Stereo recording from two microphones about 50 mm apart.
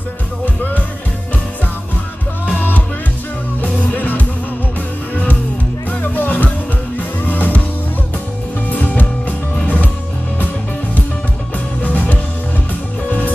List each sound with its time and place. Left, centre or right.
3.6 s music: left
8.7 s music: left
11.8 s music: left